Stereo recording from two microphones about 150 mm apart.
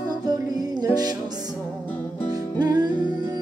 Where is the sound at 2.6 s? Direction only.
30° right (ahead or behind).